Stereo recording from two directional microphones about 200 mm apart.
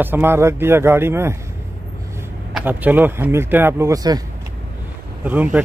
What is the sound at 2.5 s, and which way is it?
Speech, 10° right (ahead or behind).